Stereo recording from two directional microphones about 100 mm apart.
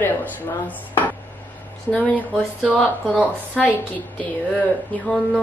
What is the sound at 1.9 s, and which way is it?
Speech, 10° left (ahead or behind).